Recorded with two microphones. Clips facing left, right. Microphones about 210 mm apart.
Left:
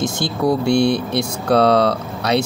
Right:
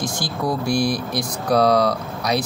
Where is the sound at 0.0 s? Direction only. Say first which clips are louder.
Left 5 dB; 25° left (ahead or behind).